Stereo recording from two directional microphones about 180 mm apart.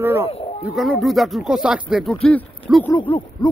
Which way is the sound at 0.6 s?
Centre (ahead or behind).